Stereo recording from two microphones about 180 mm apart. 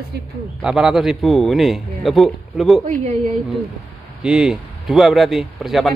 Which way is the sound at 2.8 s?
40° right (ahead or behind).